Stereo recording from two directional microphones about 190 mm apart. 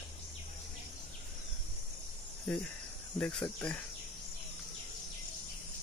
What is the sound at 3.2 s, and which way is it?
Speech, 5° left (ahead or behind).